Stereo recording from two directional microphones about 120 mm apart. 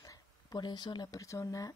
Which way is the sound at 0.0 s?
30° left (ahead or behind).